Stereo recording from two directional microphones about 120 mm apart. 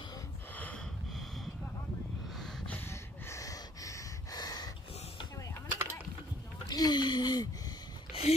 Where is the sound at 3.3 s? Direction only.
30° left (ahead or behind).